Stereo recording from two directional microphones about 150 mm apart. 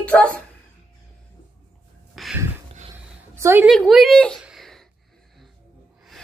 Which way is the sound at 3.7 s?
Centre (ahead or behind).